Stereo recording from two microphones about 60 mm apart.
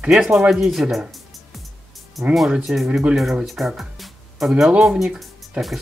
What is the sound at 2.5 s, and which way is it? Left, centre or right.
Speech, centre.